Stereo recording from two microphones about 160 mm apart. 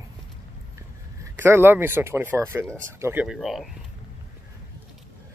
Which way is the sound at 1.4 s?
15° right (ahead or behind).